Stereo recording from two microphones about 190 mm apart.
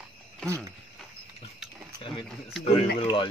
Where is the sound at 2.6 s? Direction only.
30° left (ahead or behind).